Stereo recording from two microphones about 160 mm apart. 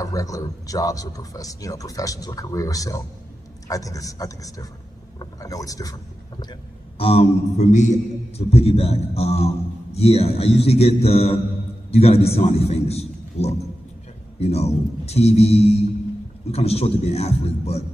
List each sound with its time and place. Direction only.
0.0 s speech: 20° left (ahead or behind)
7.0 s a man's voice: 40° left (ahead or behind)